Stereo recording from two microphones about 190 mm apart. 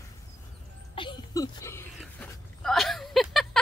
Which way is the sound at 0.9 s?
20° left (ahead or behind).